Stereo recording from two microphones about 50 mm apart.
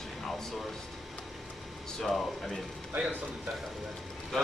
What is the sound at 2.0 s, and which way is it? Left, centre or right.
Speech, centre.